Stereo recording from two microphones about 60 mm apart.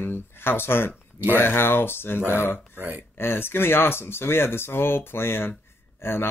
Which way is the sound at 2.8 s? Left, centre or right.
Right.